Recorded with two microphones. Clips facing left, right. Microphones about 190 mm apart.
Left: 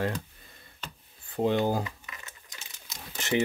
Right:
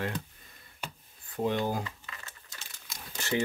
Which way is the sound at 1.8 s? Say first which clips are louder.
Left 3 dB; 15° left (ahead or behind).